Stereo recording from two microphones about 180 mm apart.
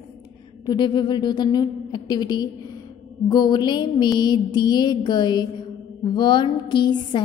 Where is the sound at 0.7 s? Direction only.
25° left (ahead or behind).